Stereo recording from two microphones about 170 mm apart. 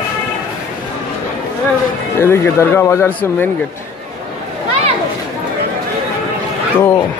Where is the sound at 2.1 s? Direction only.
15° left (ahead or behind).